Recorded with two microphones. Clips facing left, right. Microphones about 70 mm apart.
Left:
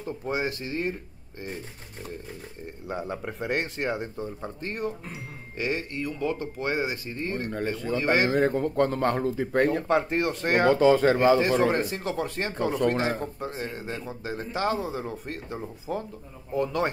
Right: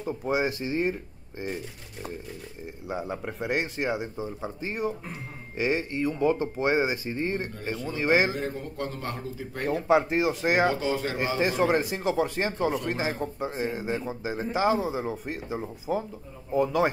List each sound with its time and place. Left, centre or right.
0.0 s a man's voice: centre
2.9 s a man's voice: centre
7.4 s speech: left
8.0 s a man's voice: centre
8.3 s speech: left
9.8 s speech: centre
10.7 s speech: left
11.3 s speech: centre
12.7 s speech: left
13.2 s a man's voice: centre